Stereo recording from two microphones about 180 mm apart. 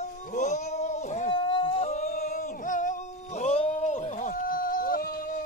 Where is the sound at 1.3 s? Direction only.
30° left (ahead or behind); by 5.0 s 50° left (ahead or behind).